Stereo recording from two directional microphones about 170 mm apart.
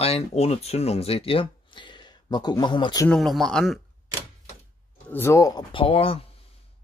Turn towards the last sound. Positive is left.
turn(degrees=35)  # may be behind; listen again after turning